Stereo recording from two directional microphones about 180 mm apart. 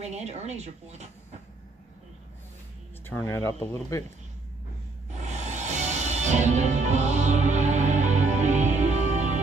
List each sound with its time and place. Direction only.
0.0 s speech: 35° right (ahead or behind)
3.1 s speech: 15° left (ahead or behind)
5.2 s music: 40° right (ahead or behind)